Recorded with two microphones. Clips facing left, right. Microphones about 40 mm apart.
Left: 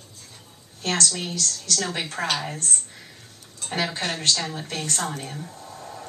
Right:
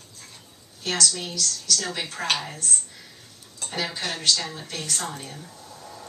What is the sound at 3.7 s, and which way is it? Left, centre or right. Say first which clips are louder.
A woman's voice: left 3 dB; left.